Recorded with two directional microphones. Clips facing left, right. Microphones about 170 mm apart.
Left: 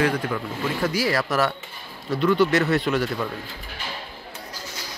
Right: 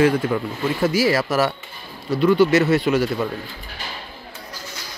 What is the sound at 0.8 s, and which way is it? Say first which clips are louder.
Speech: right 5 dB; 10° right (ahead or behind).